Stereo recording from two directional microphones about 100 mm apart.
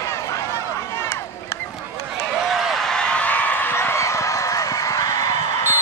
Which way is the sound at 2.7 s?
5° left (ahead or behind).